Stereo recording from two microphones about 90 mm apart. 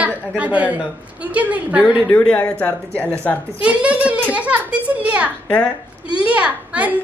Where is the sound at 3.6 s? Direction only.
15° right (ahead or behind).